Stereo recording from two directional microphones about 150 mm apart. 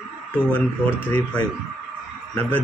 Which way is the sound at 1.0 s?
10° left (ahead or behind).